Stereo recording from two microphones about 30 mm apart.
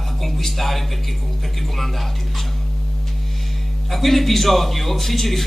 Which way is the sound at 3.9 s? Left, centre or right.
Centre.